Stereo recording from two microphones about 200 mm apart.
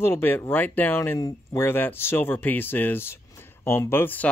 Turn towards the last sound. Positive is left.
turn(degrees=10)  # may be behind; listen again after turning